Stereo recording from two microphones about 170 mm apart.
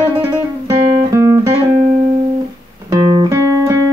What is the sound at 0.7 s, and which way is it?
Guitar, 20° right (ahead or behind).